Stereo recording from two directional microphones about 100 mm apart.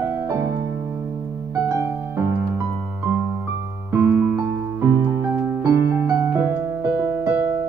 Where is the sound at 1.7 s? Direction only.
25° right (ahead or behind).